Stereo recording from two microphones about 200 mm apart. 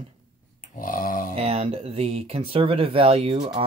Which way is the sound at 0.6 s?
45° left (ahead or behind).